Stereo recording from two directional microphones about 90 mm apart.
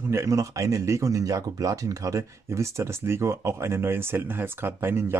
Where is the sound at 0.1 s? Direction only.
35° right (ahead or behind).